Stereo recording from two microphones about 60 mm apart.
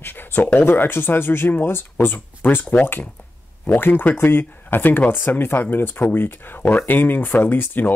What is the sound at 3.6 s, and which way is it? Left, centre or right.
Speech, left.